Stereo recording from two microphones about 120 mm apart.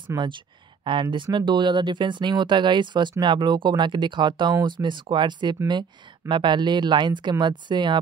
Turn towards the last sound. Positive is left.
turn(degrees=-40)  # may be behind; listen again after turning